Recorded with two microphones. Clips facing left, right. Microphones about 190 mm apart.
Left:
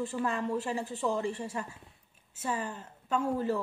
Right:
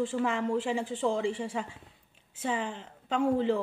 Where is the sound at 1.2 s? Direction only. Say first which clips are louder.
Right 3 dB; 90° right.